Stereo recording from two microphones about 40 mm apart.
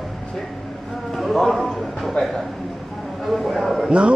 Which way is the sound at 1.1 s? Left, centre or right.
Centre.